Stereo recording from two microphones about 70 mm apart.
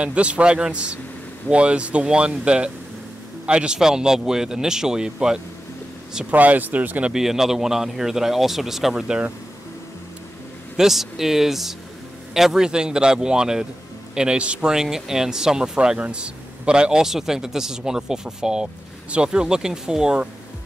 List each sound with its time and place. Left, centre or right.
0.0 s speech: centre
6.3 s speech: right
7.1 s speech: centre
10.8 s speech: centre